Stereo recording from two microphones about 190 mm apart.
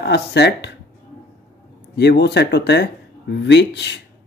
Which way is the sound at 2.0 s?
60° left (ahead or behind).